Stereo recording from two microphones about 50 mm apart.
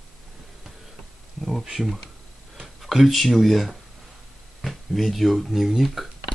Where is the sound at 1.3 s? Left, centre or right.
Centre.